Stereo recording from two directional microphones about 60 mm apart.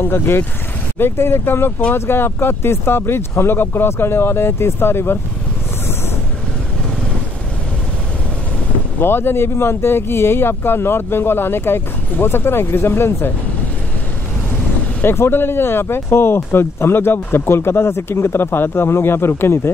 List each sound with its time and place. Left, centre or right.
0.0 s speech: left
9.0 s speech: left
15.0 s speech: left